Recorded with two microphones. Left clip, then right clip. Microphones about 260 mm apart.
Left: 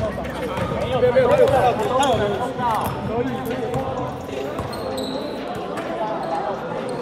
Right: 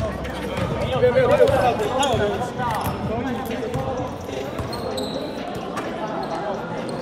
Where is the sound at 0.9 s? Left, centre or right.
Left.